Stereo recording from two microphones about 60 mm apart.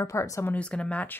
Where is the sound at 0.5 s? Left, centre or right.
Centre.